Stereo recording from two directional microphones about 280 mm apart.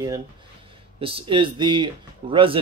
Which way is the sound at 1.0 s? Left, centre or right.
Centre.